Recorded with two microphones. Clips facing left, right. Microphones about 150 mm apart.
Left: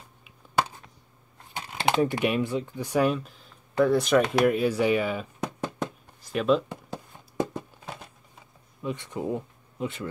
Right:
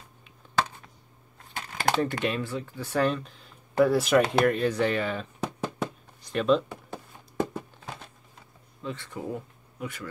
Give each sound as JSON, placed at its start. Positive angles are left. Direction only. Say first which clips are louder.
{"t": 0.2, "sound": "finger snapping", "louder": "left 1 dB", "side_deg": 10}
{"t": 1.9, "sound": "speech", "louder": "left 3 dB", "side_deg": 15}
{"t": 4.5, "sound": "speech", "louder": "left 2 dB", "side_deg": 10}
{"t": 5.4, "sound": "knock", "louder": "even", "side_deg": 0}
{"t": 6.9, "sound": "a sound", "louder": "left 2 dB", "side_deg": 15}
{"t": 8.8, "sound": "speech", "louder": "left 4 dB", "side_deg": 20}